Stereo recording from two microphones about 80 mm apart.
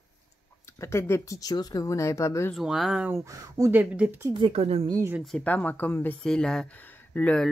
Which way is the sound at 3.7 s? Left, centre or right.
Centre.